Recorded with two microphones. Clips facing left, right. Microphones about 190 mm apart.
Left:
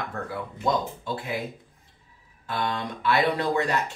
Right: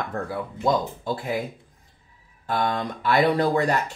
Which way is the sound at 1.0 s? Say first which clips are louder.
Right 4 dB; 40° right (ahead or behind).